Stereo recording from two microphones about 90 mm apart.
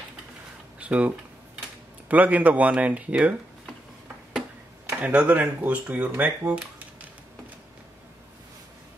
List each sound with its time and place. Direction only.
0.7 s a sound: 15° right (ahead or behind)
2.0 s speech: 15° right (ahead or behind)
5.0 s speech: 15° right (ahead or behind)